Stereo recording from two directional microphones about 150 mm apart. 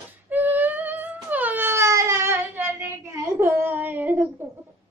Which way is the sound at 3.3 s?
15° right (ahead or behind).